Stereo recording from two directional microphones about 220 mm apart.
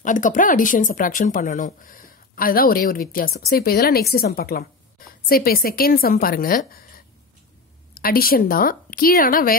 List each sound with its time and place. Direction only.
0.0 s speech: 35° left (ahead or behind)
7.9 s speech: 45° left (ahead or behind)